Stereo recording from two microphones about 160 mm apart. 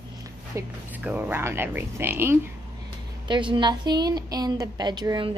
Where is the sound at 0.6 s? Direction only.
10° right (ahead or behind).